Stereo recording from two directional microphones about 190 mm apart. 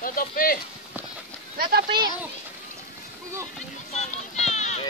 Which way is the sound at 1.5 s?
55° right (ahead or behind).